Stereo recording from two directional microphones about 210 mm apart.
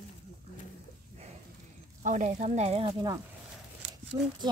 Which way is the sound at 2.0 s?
35° right (ahead or behind).